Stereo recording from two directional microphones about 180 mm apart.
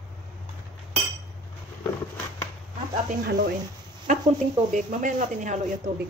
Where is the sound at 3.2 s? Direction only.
65° right (ahead or behind).